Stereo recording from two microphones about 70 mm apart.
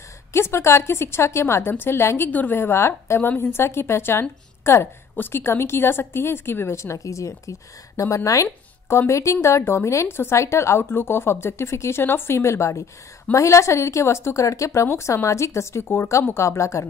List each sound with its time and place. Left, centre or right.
0.3 s a woman's voice: left